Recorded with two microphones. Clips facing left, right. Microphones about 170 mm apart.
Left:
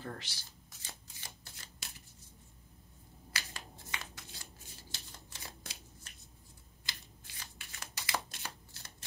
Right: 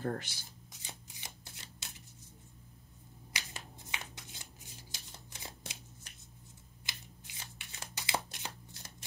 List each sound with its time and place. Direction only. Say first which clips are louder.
0.0 s speech: right 8 dB; 50° right (ahead or behind)
0.7 s shuffling cards: right 2 dB; 15° right (ahead or behind)
3.3 s shuffling cards: even; 20° right (ahead or behind)
6.9 s a sound: even; 20° right (ahead or behind)